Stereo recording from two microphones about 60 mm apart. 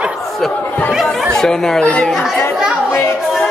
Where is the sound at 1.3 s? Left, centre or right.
Centre.